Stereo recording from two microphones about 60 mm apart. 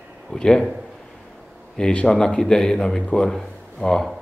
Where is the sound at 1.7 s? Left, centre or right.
Centre.